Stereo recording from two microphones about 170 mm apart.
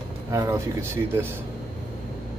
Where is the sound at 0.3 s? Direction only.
15° right (ahead or behind).